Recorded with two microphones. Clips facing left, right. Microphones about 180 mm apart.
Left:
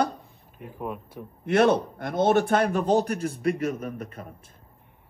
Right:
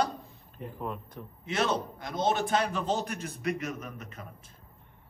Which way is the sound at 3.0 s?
35° left (ahead or behind).